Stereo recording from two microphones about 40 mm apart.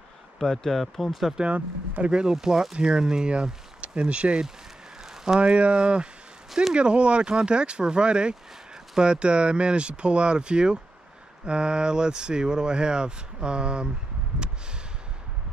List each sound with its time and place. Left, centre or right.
0.4 s speech: centre
2.0 s speech: right
5.0 s a sound: centre
5.4 s speech: right